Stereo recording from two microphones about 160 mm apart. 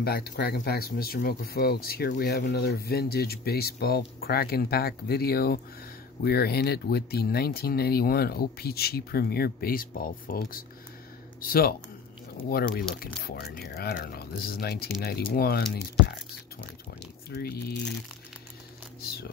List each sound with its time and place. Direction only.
0.0 s speech: 75° left (ahead or behind)
13.2 s speech: 85° left
17.3 s speech: 75° left (ahead or behind)
18.9 s whispering: 70° left (ahead or behind)